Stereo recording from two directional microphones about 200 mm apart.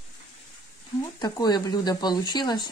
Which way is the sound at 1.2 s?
20° left (ahead or behind).